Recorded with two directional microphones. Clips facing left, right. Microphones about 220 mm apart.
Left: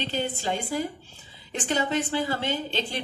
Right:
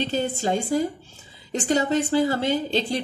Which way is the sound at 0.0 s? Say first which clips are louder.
Right 5 dB; 40° right (ahead or behind).